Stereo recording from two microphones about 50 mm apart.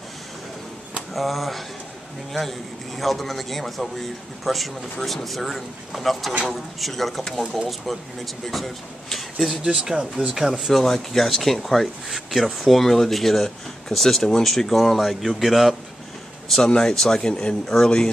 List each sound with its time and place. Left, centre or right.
1.1 s speech: centre
3.0 s speech: centre
9.5 s speech: centre
10.5 s speech: centre